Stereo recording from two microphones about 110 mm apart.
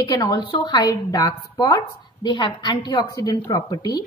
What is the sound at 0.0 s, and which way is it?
A woman's voice, 35° left (ahead or behind).